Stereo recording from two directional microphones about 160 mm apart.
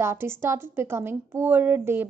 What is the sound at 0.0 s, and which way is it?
A woman's voice, 15° right (ahead or behind).